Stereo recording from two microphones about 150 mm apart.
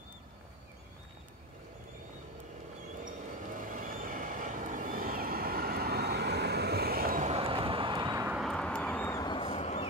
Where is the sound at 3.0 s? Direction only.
60° right (ahead or behind); by 7.2 s 90° right.